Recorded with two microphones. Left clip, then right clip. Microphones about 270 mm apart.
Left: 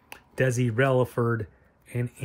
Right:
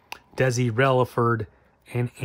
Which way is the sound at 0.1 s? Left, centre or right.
Centre.